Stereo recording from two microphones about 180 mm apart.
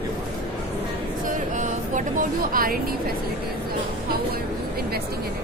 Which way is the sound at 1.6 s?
45° right (ahead or behind).